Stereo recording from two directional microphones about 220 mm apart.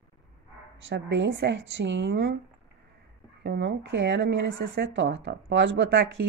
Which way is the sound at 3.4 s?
50° right (ahead or behind).